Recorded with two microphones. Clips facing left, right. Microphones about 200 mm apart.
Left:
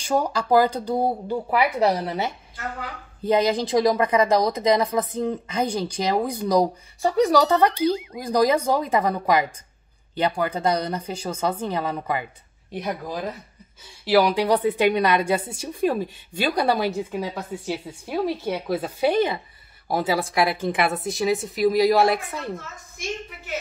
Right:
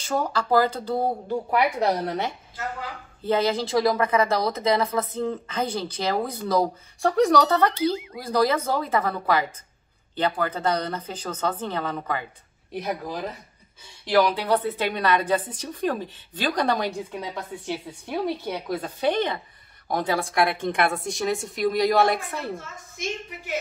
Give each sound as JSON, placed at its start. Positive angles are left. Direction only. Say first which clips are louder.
{"t": 0.0, "sound": "a woman's voice", "louder": "left 3 dB", "side_deg": 15}
{"t": 7.0, "sound": "a woman's voice", "louder": "left 1 dB", "side_deg": 5}
{"t": 8.2, "sound": "a woman's voice", "louder": "left 2 dB", "side_deg": 15}
{"t": 12.7, "sound": "a woman's voice", "louder": "left 1 dB", "side_deg": 0}